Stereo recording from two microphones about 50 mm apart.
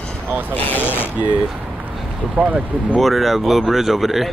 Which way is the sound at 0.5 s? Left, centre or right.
Left.